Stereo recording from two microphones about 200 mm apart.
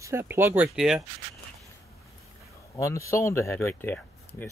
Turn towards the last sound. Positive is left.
turn(degrees=10)  # may be behind; listen again after turning